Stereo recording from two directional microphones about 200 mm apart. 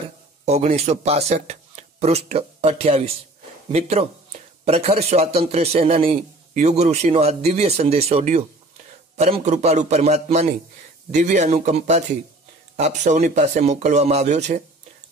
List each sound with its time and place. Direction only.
0.5 s a man's voice: 30° right (ahead or behind)